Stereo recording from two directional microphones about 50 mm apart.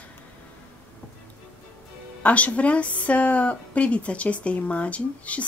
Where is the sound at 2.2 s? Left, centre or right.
Left.